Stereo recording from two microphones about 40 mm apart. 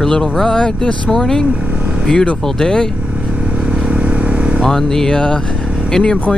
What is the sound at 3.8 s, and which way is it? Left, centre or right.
Vehicle, right.